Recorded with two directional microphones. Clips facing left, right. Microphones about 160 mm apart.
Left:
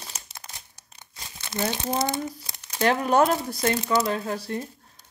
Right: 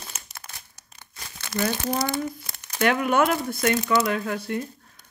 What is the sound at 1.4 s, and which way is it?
Speech, 25° left (ahead or behind).